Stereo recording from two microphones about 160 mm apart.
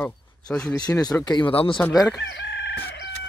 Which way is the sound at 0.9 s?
25° left (ahead or behind).